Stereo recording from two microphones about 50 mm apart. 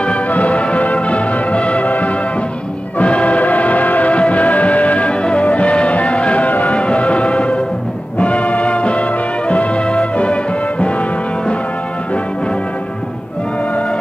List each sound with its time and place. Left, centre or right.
0.0 s music: left